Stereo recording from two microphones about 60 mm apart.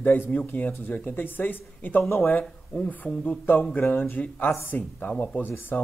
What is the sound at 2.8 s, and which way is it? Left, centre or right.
Speech, left.